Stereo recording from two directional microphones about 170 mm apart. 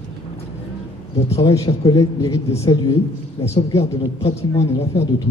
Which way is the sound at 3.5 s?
35° left (ahead or behind).